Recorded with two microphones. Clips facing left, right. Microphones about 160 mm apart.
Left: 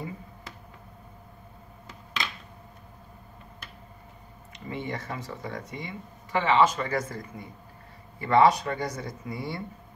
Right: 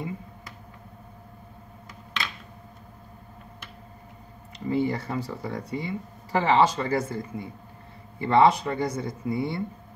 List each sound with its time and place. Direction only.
4.5 s speech: 30° right (ahead or behind)